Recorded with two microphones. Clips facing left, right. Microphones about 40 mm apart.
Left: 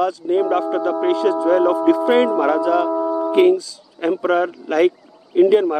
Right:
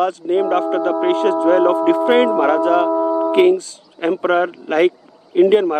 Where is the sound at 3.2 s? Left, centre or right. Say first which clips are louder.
Even; right.